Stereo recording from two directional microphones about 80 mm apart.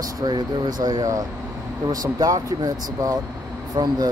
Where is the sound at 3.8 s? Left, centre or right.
Right.